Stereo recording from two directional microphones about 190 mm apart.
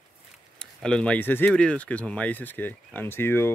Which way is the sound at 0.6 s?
5° left (ahead or behind).